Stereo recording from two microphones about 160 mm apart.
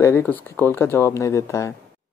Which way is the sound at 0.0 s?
15° left (ahead or behind).